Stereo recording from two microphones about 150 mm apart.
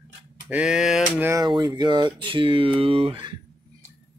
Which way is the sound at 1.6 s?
30° right (ahead or behind).